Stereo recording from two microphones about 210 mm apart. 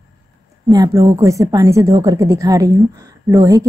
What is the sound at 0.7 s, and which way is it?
A woman's voice, 15° right (ahead or behind).